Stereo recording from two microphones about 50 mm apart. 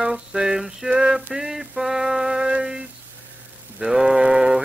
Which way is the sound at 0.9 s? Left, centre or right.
Centre.